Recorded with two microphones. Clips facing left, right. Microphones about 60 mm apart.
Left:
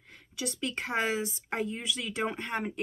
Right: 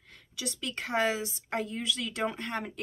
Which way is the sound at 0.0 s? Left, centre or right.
Centre.